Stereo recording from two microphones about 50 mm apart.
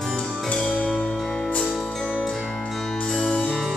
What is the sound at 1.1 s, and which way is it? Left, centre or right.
Music, centre.